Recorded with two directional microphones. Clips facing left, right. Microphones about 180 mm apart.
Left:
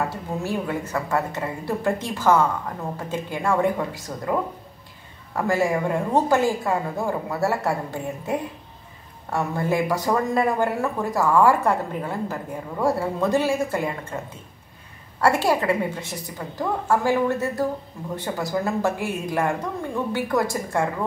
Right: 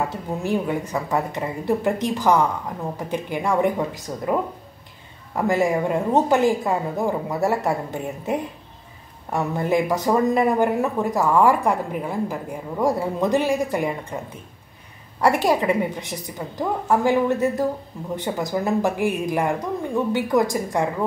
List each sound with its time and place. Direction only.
0.4 s a woman's voice: 15° right (ahead or behind)